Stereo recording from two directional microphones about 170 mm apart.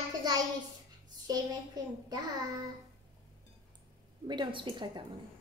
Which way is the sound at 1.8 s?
25° right (ahead or behind).